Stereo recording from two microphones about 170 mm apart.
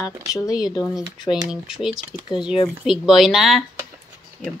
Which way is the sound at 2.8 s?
Centre (ahead or behind).